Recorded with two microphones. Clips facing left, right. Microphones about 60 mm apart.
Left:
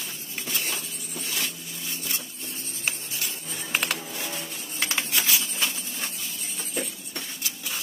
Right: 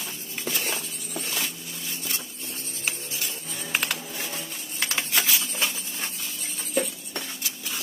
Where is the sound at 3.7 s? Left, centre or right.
Centre.